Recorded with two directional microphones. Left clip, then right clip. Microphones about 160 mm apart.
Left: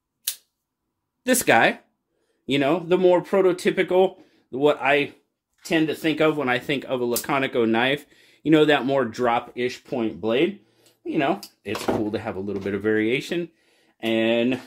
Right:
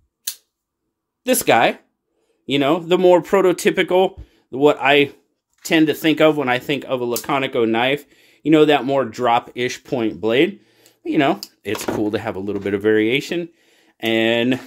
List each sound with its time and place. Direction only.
1.2 s speech: 15° right (ahead or behind)
2.9 s speech: 40° right (ahead or behind)
5.6 s speech: 55° right (ahead or behind); by 9.3 s 20° right (ahead or behind)
9.5 s speech: 50° right (ahead or behind); by 13.5 s 35° right (ahead or behind)
13.9 s speech: 50° right (ahead or behind)